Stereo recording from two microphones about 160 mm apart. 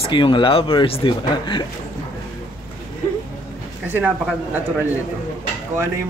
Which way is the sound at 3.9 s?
10° right (ahead or behind).